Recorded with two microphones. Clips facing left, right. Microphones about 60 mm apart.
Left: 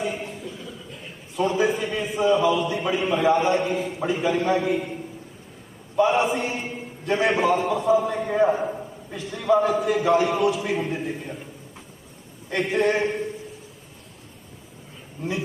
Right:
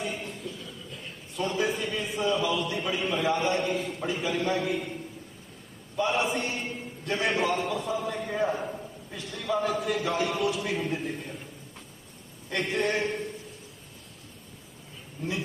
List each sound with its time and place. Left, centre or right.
0.0 s a sound: centre
2.8 s a man's voice: centre
6.2 s a sound: centre
7.2 s a man's voice: centre
7.5 s a man's voice: centre
7.8 s a man's voice: centre
9.1 s a man's voice: centre
12.4 s a man's voice: centre
15.2 s a man's voice: centre